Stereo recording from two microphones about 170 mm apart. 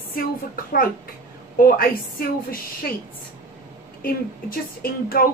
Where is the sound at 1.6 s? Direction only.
60° left (ahead or behind).